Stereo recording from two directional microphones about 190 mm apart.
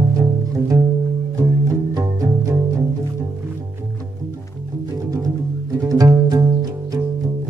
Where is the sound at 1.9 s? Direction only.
15° right (ahead or behind).